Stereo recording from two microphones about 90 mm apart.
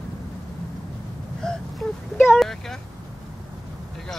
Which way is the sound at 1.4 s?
5° left (ahead or behind).